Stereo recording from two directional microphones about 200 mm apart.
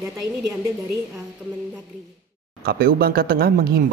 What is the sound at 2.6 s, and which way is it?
Speech, 50° right (ahead or behind).